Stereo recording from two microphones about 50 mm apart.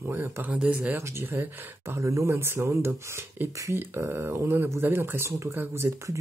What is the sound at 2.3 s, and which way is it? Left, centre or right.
Speech, right.